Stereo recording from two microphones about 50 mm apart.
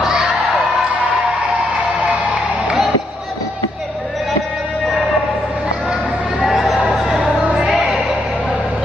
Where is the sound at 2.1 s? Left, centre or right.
Right.